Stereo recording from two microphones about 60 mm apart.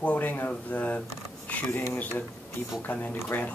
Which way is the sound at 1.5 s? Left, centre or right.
Left.